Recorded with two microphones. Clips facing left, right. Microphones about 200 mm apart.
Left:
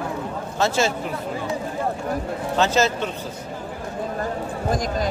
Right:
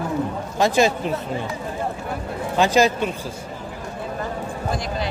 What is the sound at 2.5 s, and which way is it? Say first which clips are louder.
Speech: right 3 dB; 15° right (ahead or behind).